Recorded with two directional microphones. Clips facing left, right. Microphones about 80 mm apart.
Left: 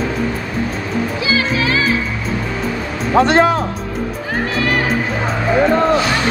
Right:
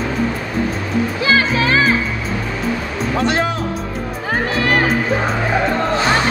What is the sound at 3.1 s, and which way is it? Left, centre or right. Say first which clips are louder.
Speech: left 7 dB; left.